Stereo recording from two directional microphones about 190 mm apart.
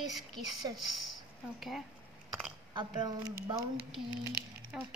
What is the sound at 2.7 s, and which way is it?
Speech, 20° right (ahead or behind).